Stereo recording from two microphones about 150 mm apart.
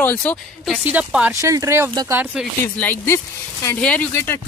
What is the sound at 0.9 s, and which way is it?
Speech, 10° right (ahead or behind).